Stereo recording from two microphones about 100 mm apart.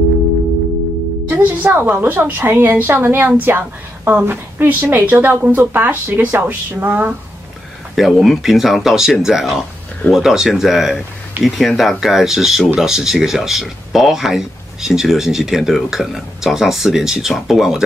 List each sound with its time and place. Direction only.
1.3 s a woman's voice: 20° right (ahead or behind)
7.9 s speech: centre (ahead or behind)